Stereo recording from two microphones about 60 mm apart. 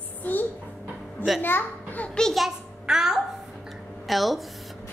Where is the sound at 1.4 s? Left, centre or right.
Left.